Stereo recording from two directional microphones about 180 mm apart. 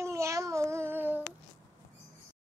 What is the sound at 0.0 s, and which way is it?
Child singing, 15° right (ahead or behind).